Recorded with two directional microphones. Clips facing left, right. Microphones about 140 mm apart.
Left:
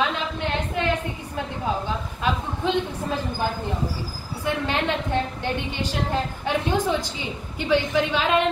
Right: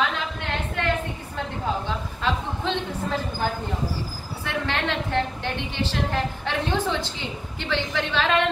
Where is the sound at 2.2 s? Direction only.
15° left (ahead or behind).